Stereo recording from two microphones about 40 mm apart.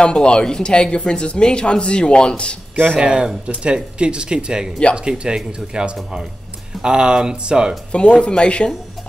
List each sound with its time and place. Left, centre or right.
0.0 s speech: left
3.0 s speech: right
7.9 s speech: left